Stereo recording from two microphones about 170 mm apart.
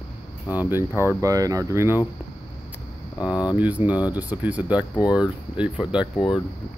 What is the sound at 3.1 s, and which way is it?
Speech, 25° left (ahead or behind).